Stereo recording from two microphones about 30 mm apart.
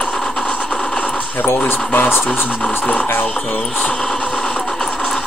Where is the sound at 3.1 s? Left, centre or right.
Left.